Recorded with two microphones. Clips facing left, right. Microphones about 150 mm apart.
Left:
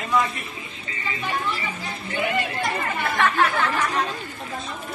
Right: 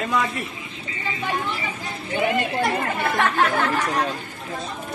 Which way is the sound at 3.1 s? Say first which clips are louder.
Even; 50° right (ahead or behind).